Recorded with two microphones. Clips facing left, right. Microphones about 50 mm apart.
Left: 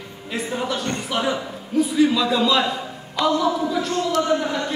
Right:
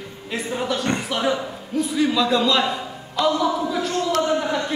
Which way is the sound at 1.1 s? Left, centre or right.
Centre.